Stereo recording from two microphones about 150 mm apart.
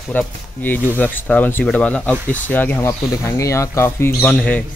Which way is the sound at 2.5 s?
15° left (ahead or behind).